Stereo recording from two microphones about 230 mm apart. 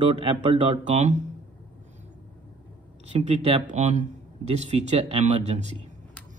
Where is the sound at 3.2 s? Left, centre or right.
Right.